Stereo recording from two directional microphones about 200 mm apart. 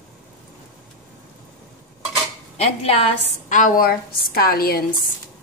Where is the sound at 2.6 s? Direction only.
30° left (ahead or behind); by 5.1 s 50° left (ahead or behind).